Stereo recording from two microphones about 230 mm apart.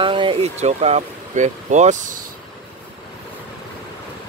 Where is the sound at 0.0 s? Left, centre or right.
Right.